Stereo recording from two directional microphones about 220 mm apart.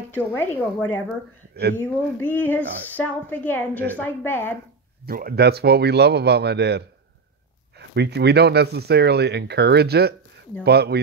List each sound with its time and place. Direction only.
0.1 s speech: 10° left (ahead or behind)
5.0 s speech: 40° right (ahead or behind)
7.9 s speech: 50° right (ahead or behind)